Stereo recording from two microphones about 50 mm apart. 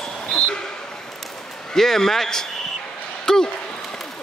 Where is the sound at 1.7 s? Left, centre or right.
Centre.